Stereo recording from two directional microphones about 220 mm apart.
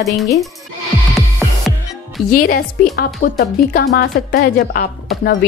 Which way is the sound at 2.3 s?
40° left (ahead or behind).